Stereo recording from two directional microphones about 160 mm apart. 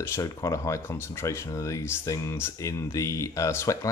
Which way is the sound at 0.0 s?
15° left (ahead or behind).